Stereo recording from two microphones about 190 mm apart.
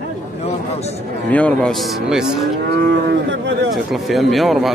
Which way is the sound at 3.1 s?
65° right (ahead or behind).